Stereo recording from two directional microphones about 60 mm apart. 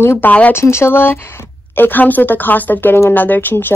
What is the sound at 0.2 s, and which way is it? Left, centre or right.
Speech, left.